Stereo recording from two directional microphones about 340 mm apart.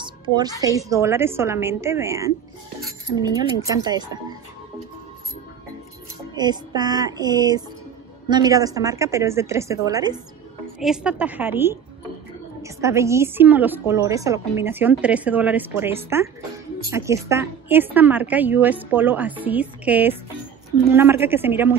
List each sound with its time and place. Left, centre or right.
0.0 s a woman's voice: centre
6.3 s a woman's voice: centre